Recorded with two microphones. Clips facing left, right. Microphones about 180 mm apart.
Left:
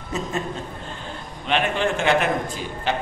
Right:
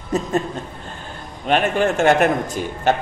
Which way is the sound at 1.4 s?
45° right (ahead or behind).